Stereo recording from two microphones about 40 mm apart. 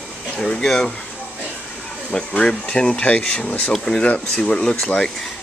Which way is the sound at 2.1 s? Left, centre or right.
Centre.